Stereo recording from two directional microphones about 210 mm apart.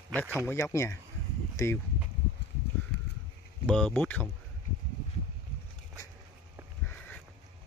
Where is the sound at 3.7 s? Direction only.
5° left (ahead or behind).